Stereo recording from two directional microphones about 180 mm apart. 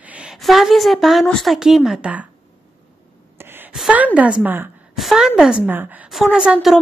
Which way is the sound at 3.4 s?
10° right (ahead or behind).